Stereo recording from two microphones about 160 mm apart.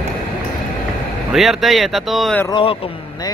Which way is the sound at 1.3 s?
Centre (ahead or behind).